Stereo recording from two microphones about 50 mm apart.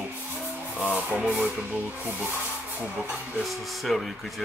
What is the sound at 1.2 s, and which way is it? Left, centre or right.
Speech, right.